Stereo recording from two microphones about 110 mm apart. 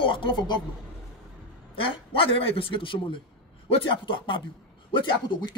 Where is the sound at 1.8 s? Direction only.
55° left (ahead or behind).